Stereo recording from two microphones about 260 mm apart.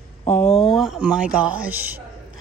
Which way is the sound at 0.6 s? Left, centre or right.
Centre.